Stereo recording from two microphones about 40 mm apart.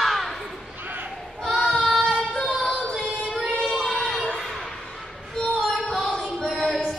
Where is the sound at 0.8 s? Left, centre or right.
Right.